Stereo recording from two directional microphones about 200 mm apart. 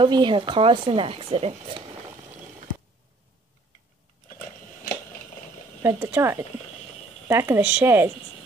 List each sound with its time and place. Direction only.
0.0 s speech: 25° right (ahead or behind)
5.8 s speech: 15° right (ahead or behind)